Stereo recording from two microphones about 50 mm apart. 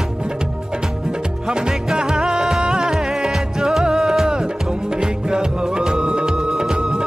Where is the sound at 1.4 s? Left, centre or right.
Centre.